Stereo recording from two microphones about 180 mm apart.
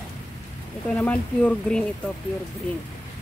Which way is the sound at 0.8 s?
5° left (ahead or behind).